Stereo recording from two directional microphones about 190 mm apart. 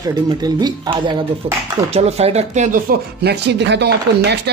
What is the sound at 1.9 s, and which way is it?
Speech, 35° right (ahead or behind).